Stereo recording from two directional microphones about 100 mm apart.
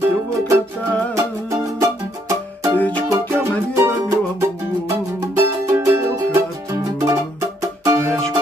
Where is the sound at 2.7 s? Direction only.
15° left (ahead or behind).